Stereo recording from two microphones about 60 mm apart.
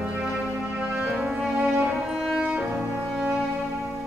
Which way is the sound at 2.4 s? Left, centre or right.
Centre.